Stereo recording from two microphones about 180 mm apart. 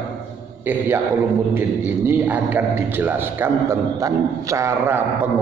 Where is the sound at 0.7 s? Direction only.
10° right (ahead or behind).